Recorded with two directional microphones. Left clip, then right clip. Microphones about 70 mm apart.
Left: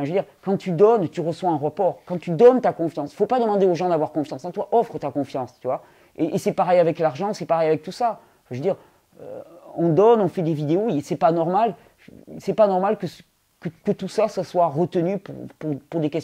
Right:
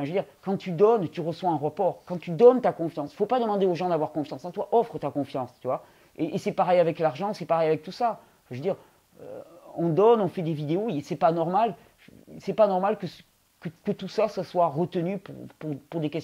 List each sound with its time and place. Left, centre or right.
0.0 s speech: left